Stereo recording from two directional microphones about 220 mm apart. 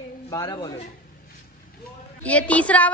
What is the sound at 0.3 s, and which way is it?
Speech, 15° left (ahead or behind).